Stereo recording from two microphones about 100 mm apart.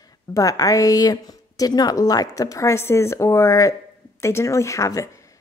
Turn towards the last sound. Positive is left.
turn(degrees=30)  # may be behind; listen again after turning